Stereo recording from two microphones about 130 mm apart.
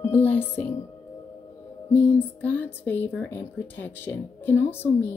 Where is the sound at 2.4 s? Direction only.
10° left (ahead or behind).